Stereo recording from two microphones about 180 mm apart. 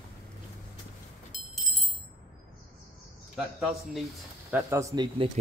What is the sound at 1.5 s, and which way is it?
Music, centre (ahead or behind).